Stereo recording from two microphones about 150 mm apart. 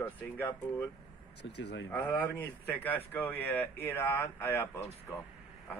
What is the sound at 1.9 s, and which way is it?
Speech, 10° left (ahead or behind).